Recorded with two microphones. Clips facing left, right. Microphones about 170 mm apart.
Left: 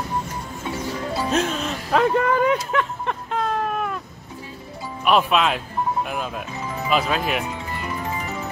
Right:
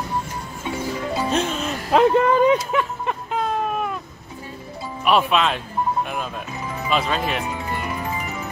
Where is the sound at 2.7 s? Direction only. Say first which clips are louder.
Right 1 dB; 10° right (ahead or behind).